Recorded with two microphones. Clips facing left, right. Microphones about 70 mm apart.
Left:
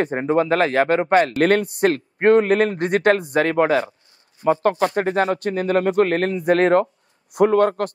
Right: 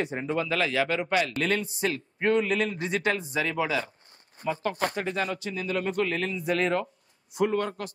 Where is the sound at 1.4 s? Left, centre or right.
Left.